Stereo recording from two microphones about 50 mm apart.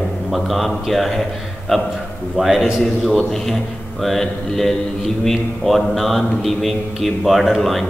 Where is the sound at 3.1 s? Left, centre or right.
Centre.